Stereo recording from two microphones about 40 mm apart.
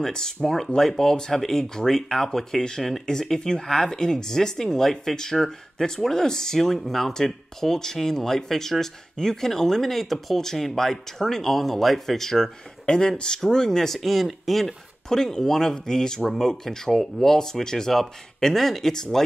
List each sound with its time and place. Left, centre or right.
0.0 s speech: centre
12.8 s speech: left
13.9 s speech: centre
15.0 s speech: centre